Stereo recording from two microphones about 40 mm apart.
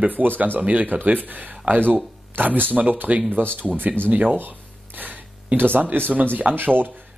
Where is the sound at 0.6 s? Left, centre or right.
Right.